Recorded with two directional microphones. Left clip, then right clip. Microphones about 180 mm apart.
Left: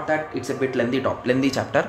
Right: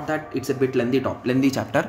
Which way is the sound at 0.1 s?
30° right (ahead or behind).